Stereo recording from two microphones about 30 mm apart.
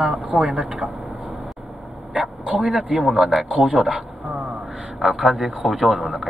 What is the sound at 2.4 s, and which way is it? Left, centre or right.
Speech, right.